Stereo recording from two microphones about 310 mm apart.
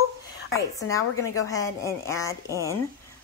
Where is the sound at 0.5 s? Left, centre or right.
Centre.